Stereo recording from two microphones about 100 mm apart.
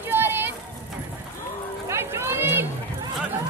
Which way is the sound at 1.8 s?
25° right (ahead or behind).